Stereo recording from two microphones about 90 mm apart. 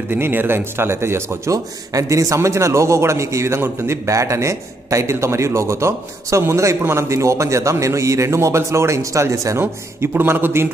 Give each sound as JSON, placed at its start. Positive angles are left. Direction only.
{"t": 0.1, "sound": "speech", "side_deg": -25}